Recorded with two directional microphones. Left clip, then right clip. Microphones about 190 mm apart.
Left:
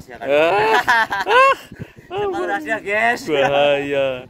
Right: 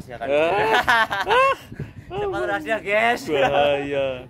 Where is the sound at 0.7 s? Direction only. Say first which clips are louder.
Left 3 dB; 10° left (ahead or behind).